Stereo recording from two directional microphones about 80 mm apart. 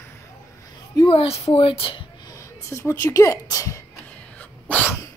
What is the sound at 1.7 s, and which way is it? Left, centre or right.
Speech, left.